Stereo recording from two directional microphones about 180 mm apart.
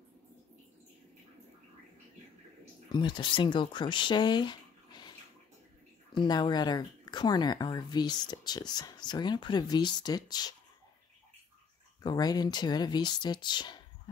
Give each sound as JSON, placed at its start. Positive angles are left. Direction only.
{"t": 2.9, "sound": "speech", "side_deg": 25}
{"t": 6.1, "sound": "speech", "side_deg": 25}
{"t": 12.0, "sound": "speech", "side_deg": 20}